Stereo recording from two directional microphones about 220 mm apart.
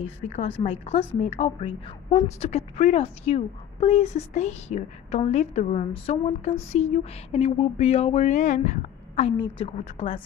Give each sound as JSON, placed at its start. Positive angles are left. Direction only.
{"t": 0.0, "sound": "speech", "side_deg": 30}